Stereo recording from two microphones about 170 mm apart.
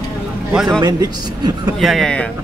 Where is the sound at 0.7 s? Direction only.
25° right (ahead or behind).